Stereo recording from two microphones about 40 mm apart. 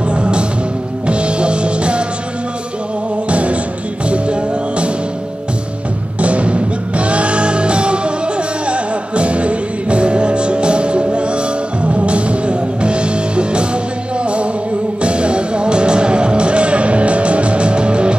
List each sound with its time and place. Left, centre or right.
0.1 s music: right
3.3 s music: right
6.1 s music: right